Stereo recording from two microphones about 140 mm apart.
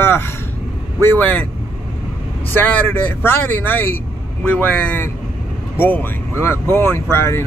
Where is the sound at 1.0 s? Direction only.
10° left (ahead or behind).